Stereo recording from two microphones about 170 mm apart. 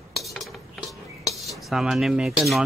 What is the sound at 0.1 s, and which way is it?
Cutlery, centre (ahead or behind).